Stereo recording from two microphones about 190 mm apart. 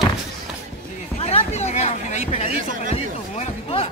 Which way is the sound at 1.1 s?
35° left (ahead or behind).